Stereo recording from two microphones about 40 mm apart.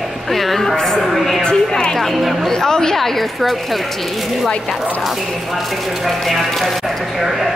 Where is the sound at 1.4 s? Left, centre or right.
Left.